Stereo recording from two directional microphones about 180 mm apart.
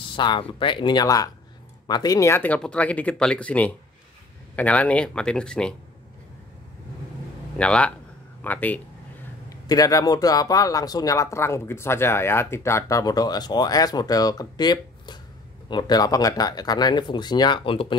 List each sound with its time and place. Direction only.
0.1 s a man's voice: 25° left (ahead or behind); by 5.8 s 5° left (ahead or behind)
7.5 s a man's voice: 5° left (ahead or behind); by 17.9 s 30° left (ahead or behind)